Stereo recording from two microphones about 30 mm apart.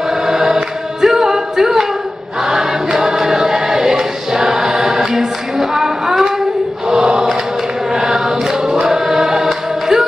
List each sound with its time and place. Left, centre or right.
0.3 s choir: centre
1.0 s a capella: centre
2.4 s choir: centre
6.9 s choir: right